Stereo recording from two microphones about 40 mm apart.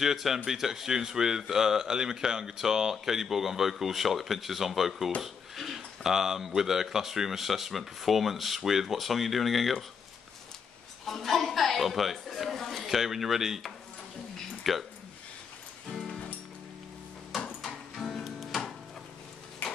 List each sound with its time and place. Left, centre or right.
0.0 s speech: centre
11.1 s a woman's voice: centre
12.8 s speech: centre
17.3 s a sound: centre
17.9 s music: centre
19.6 s tick-tock: left